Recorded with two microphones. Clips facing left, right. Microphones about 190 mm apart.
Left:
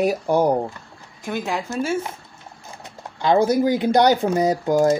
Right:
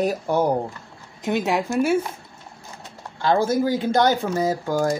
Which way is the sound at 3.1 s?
20° left (ahead or behind).